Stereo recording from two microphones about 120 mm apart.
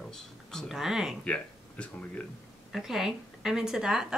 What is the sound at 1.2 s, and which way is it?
Speech, 10° left (ahead or behind).